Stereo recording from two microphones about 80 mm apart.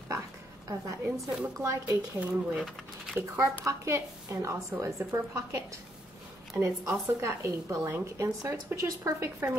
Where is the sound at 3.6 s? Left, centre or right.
Right.